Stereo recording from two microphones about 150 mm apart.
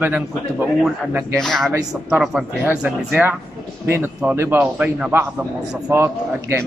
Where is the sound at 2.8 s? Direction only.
10° right (ahead or behind).